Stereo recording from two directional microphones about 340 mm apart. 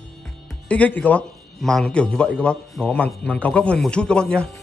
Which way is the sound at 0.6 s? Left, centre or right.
Centre.